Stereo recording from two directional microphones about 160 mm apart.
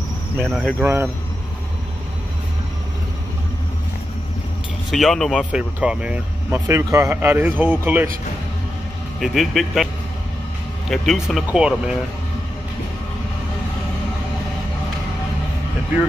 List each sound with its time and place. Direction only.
0.7 s speech: 15° right (ahead or behind)
4.9 s speech: centre (ahead or behind)
5.5 s speech: 5° right (ahead or behind)
9.2 s speech: centre (ahead or behind)
10.9 s speech: centre (ahead or behind)